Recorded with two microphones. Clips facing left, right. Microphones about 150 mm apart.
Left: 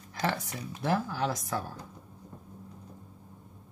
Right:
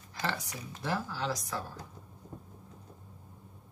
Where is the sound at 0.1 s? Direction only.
55° left (ahead or behind).